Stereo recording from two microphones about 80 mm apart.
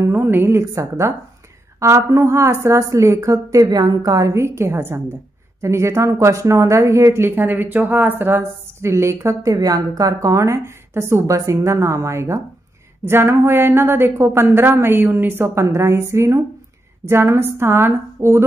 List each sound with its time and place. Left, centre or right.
0.0 s speech: right